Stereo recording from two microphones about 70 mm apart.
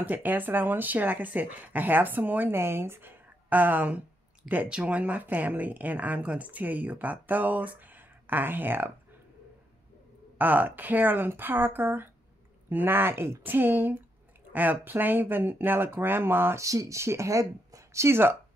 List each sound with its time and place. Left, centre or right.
0.0 s speech: right
10.3 s speech: right
16.5 s speech: right